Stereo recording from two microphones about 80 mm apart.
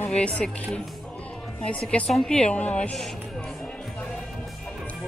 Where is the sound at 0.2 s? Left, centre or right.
Centre.